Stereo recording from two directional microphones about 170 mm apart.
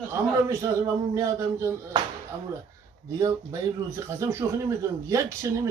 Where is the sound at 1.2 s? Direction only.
15° right (ahead or behind).